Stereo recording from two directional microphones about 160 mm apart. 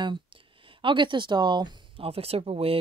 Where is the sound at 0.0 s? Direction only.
30° right (ahead or behind).